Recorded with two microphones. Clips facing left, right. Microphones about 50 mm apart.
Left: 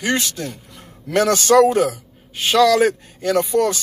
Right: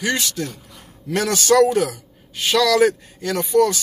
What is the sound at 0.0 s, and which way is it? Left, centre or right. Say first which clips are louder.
A man's voice: left 1 dB; left.